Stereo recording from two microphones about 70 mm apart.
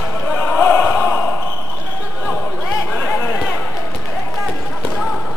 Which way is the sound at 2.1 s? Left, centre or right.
Centre.